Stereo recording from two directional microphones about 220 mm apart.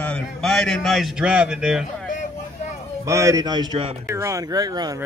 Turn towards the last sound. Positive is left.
turn(degrees=-15)  # may be behind; listen again after turning